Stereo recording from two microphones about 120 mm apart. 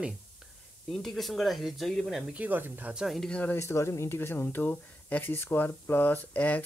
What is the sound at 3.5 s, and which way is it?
Speech, 20° left (ahead or behind).